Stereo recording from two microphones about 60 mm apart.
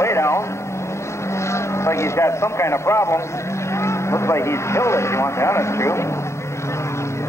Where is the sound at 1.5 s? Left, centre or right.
Left.